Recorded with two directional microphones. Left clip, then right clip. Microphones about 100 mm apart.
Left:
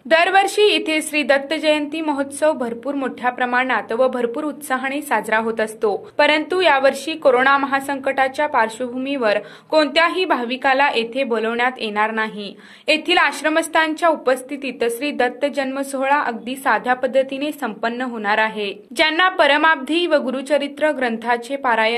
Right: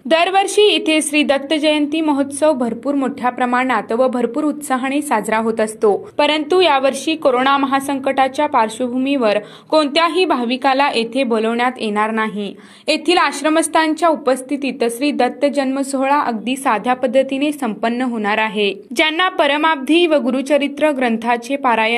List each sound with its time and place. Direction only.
0.1 s a woman's voice: 30° right (ahead or behind)